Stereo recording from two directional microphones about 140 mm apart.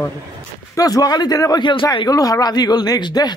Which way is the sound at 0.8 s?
25° left (ahead or behind).